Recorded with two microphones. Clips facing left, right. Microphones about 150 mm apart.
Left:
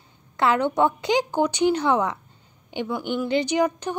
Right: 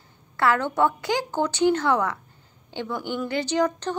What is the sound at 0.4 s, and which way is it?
A woman's voice, 20° left (ahead or behind).